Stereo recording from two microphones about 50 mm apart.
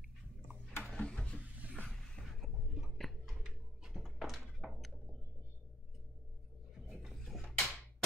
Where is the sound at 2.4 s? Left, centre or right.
Centre.